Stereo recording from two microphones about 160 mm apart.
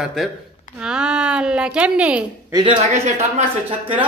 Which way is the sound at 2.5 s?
35° right (ahead or behind).